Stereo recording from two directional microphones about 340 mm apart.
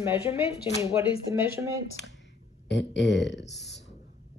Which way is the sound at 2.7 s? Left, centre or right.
Left.